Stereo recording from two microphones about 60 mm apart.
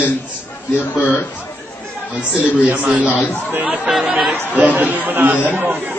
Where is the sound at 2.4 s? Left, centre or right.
Right.